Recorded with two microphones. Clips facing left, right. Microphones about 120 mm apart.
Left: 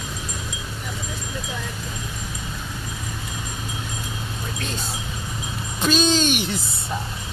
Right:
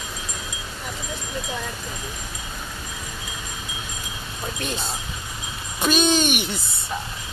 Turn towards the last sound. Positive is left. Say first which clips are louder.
# even
turn(degrees=0)  # may be behind; listen again after turning